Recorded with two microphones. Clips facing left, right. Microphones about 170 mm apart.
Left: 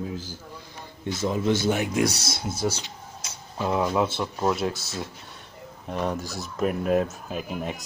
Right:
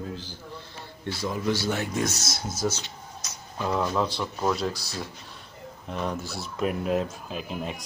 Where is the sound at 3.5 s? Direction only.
10° left (ahead or behind).